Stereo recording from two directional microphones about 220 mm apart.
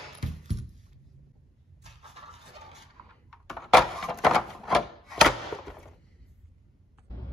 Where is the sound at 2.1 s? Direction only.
30° right (ahead or behind).